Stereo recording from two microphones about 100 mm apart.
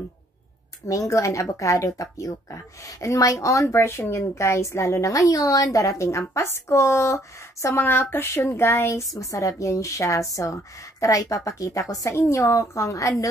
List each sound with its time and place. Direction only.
0.8 s speech: 35° left (ahead or behind)